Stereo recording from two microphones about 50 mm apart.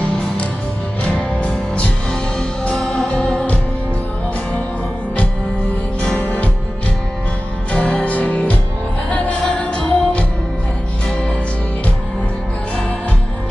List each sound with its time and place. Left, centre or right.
2.7 s music: centre
3.0 s music: left
6.1 s music: left
7.7 s music: left